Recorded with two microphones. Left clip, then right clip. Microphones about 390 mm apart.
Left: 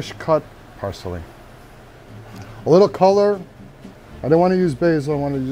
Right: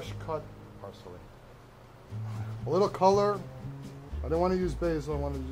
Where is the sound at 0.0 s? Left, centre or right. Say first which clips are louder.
Left 17 dB; left.